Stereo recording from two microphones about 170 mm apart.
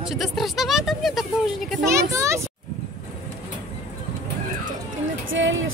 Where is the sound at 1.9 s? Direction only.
15° right (ahead or behind).